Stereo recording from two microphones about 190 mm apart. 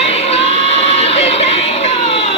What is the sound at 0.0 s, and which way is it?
Music, 30° left (ahead or behind).